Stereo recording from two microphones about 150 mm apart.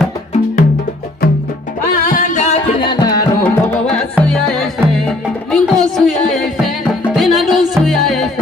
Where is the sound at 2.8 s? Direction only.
30° left (ahead or behind).